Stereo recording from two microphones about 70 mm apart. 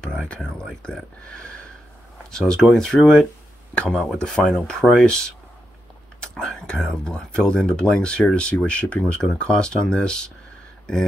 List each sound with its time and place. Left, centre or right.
0.0 s speech: centre
4.0 s speech: centre